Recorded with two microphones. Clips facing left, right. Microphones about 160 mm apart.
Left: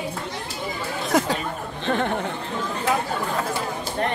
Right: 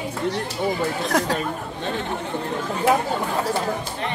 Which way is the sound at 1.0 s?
Centre (ahead or behind).